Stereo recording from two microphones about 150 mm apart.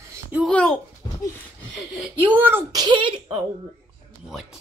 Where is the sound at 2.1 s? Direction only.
10° right (ahead or behind).